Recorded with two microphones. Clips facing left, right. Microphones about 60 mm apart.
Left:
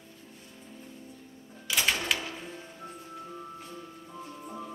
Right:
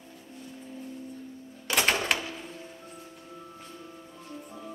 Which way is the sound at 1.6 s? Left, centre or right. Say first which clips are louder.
Right 3 dB; right.